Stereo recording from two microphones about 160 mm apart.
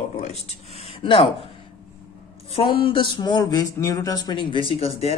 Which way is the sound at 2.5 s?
35° left (ahead or behind).